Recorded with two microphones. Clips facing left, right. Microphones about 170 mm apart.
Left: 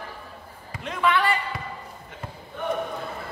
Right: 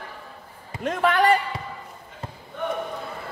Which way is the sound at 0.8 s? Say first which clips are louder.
Right 4 dB; 45° right (ahead or behind).